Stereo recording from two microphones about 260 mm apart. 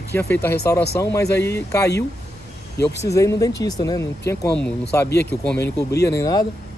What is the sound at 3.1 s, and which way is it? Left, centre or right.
Speech, centre.